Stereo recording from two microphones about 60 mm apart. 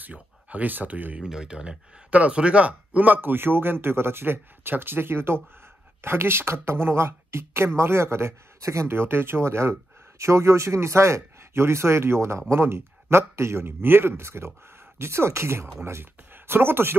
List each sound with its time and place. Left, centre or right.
0.0 s speech: right
1.2 s speech: centre; by 16.9 s right